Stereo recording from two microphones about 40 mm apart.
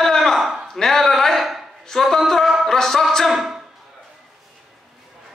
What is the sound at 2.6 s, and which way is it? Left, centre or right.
Music, centre.